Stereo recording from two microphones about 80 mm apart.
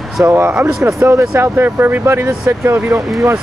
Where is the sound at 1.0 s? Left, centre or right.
Right.